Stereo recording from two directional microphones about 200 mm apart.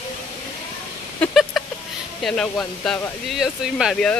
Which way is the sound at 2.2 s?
Centre (ahead or behind).